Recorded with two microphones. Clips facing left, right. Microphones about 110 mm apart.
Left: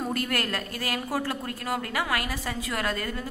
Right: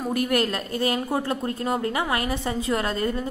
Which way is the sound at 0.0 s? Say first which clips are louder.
Right 6 dB; 15° right (ahead or behind).